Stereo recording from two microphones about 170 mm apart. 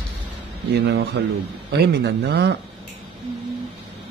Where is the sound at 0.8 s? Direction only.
80° right.